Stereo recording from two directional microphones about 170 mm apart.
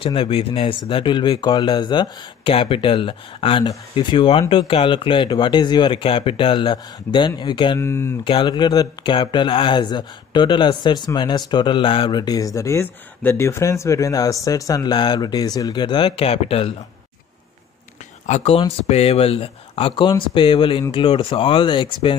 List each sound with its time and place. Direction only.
0.0 s speech: 30° left (ahead or behind)
7.8 s speech: 15° left (ahead or behind)
8.2 s speech: 30° left (ahead or behind)
18.2 s speech: 40° left (ahead or behind)